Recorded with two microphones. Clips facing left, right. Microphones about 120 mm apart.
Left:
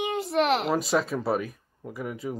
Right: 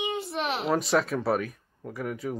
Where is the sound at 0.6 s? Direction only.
Centre (ahead or behind).